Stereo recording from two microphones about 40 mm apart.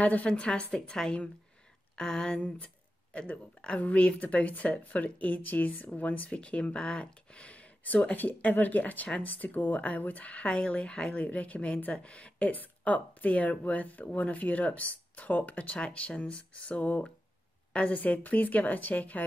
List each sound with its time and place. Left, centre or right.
0.0 s speech: left
0.3 s a woman's voice: left
2.3 s speech: left
11.1 s a woman's voice: left